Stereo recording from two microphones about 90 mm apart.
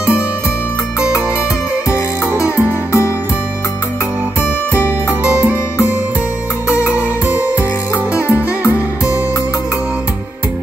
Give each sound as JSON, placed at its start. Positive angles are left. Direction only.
{"t": 5.2, "sound": "music", "side_deg": -15}